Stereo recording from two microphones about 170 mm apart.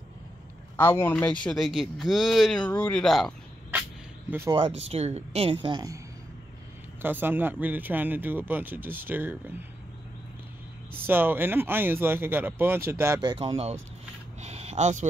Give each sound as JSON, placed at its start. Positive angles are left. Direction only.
{"t": 0.7, "sound": "a man's voice", "side_deg": 15}
{"t": 4.5, "sound": "speech", "side_deg": -30}
{"t": 7.0, "sound": "speech", "side_deg": -10}
{"t": 11.1, "sound": "speech", "side_deg": -10}
{"t": 14.4, "sound": "a sound", "side_deg": -40}